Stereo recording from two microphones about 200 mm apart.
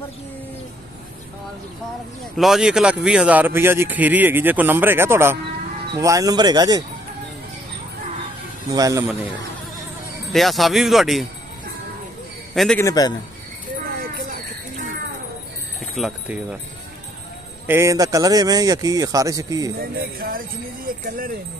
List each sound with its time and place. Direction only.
2.3 s speech: centre (ahead or behind); by 6.8 s 20° right (ahead or behind)
8.7 s speech: 15° right (ahead or behind)
10.3 s speech: centre (ahead or behind)
12.5 s speech: 5° left (ahead or behind)
12.8 s a man's voice: 20° left (ahead or behind)
13.8 s a sound: 45° right (ahead or behind)
16.0 s speech: centre (ahead or behind)
17.6 s speech: 15° right (ahead or behind)
19.8 s speech: 45° right (ahead or behind)